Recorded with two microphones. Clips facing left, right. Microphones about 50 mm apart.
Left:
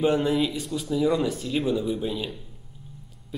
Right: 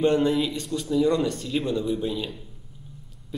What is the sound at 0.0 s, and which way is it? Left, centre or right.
A woman's voice, centre.